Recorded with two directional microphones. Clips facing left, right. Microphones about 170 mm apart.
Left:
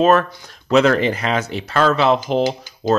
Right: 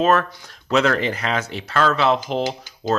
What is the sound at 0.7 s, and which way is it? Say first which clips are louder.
Speech: left 5 dB; 20° left (ahead or behind).